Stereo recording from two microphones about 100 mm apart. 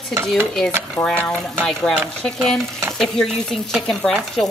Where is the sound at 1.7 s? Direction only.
5° left (ahead or behind).